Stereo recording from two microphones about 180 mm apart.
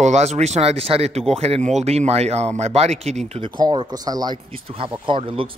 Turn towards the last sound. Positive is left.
turn(degrees=-30)  # may be behind; listen again after turning